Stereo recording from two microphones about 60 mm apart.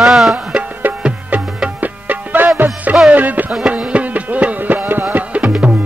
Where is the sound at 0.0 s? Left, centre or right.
Centre.